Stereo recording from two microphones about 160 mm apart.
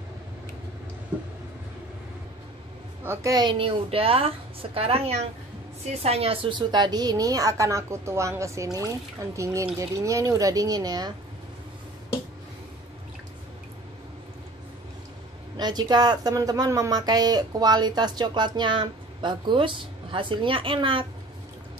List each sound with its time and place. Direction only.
3.0 s a woman's voice: 20° right (ahead or behind)
15.5 s speech: 25° right (ahead or behind)